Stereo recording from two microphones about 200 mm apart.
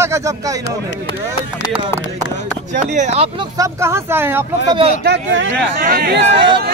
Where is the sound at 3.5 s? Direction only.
15° right (ahead or behind).